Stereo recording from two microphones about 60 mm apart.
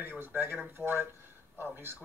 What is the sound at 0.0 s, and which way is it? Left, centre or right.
A man's voice, right.